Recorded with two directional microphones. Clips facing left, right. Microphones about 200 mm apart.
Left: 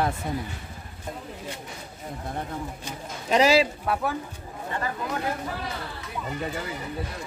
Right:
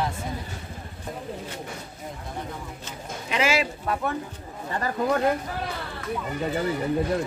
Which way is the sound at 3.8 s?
5° left (ahead or behind).